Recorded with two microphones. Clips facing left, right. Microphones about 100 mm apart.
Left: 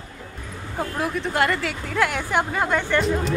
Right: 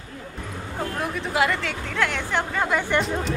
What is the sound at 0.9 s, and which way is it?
Speech, centre (ahead or behind).